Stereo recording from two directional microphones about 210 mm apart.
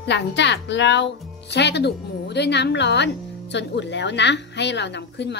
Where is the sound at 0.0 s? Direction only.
55° left (ahead or behind).